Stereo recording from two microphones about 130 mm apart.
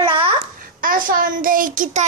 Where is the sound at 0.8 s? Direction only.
90° right.